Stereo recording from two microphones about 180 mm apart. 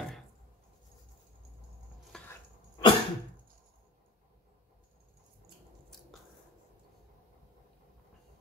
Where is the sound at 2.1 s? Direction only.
5° left (ahead or behind).